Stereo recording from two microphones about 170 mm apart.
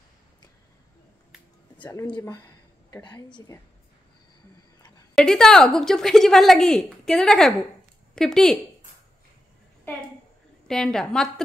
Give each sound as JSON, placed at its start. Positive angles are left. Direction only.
{"t": 2.4, "sound": "a sound", "side_deg": 25}
{"t": 5.1, "sound": "a woman's voice", "side_deg": 5}
{"t": 10.7, "sound": "a woman's voice", "side_deg": 5}